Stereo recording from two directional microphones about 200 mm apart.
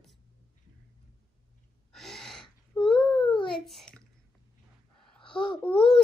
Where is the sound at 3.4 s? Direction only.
Centre (ahead or behind).